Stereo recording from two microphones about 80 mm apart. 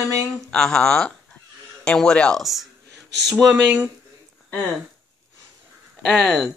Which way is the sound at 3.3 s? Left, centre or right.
Centre.